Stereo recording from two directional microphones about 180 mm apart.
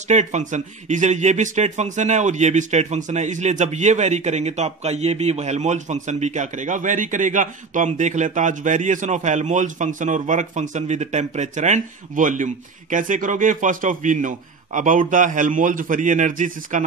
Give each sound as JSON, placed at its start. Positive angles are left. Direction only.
{"t": 0.1, "sound": "a man's voice", "side_deg": -40}